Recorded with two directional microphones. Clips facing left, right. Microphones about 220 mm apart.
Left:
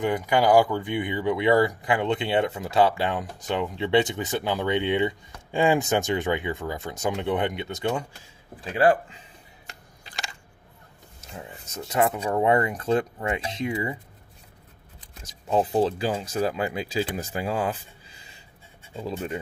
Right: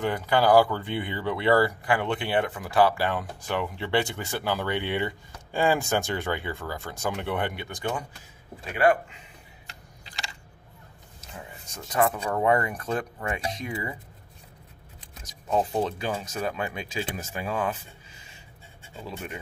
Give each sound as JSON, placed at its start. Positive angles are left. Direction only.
{"t": 0.0, "sound": "speech", "side_deg": 15}
{"t": 9.7, "sound": "a sound", "side_deg": 50}
{"t": 11.7, "sound": "speech", "side_deg": 25}
{"t": 15.5, "sound": "speech", "side_deg": 30}